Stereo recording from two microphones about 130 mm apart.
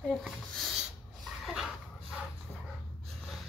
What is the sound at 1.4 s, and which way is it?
Dog, centre (ahead or behind).